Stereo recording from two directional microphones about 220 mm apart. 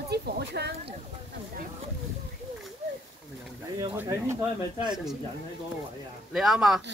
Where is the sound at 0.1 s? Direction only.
50° right (ahead or behind).